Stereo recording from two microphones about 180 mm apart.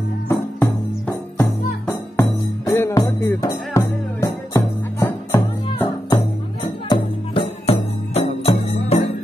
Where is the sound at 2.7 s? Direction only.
15° left (ahead or behind).